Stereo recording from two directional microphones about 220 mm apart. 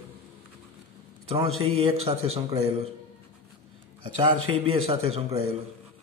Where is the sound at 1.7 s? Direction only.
25° right (ahead or behind).